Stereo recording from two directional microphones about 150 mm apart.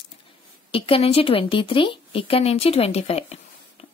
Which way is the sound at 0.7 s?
40° left (ahead or behind).